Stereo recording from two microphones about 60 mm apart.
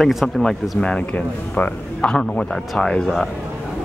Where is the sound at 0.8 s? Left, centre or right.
Left.